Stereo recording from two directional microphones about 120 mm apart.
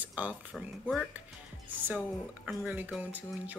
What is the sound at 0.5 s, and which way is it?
Speech, 5° left (ahead or behind).